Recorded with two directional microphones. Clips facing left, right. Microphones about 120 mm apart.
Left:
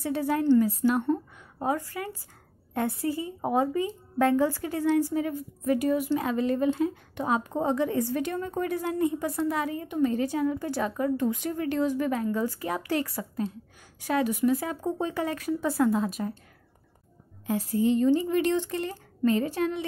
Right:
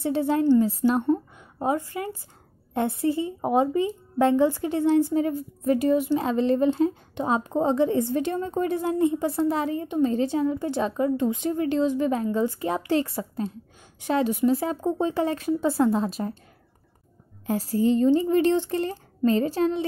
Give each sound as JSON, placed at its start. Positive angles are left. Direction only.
{"t": 0.0, "sound": "a woman's voice", "side_deg": -25}
{"t": 17.5, "sound": "speech", "side_deg": -35}